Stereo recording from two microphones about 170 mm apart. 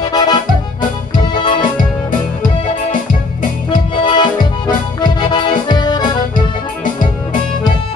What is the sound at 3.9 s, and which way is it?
Accordion, 30° left (ahead or behind).